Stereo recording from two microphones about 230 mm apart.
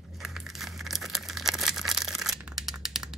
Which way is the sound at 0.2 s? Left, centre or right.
Centre.